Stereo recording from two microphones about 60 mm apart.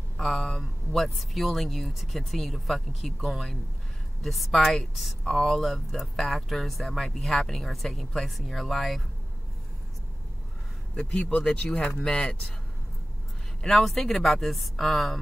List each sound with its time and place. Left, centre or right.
0.2 s speech: centre
11.0 s speech: centre
13.6 s speech: centre